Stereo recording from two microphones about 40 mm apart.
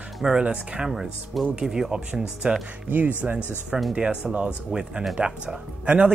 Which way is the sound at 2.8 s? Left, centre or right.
Right.